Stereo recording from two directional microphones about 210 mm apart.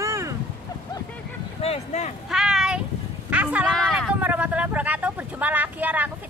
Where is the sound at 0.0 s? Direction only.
15° right (ahead or behind).